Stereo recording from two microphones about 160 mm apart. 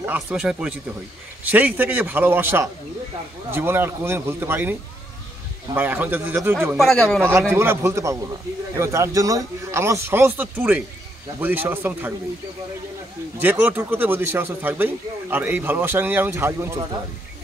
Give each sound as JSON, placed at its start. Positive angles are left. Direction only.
{"t": 0.0, "sound": "speech", "side_deg": -10}
{"t": 5.8, "sound": "speech", "side_deg": -10}
{"t": 6.8, "sound": "speech", "side_deg": 0}
{"t": 7.5, "sound": "speech", "side_deg": -15}
{"t": 13.4, "sound": "speech", "side_deg": -10}